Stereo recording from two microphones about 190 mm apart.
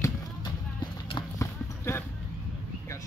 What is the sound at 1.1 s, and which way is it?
Clip-clop, 25° left (ahead or behind).